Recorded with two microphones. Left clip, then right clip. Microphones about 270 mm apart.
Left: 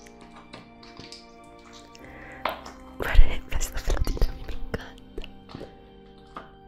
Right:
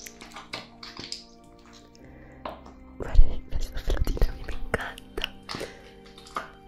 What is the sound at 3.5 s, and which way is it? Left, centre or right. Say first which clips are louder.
Music: right 1 dB; left.